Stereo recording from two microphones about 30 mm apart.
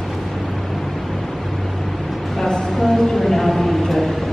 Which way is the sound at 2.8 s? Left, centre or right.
Centre.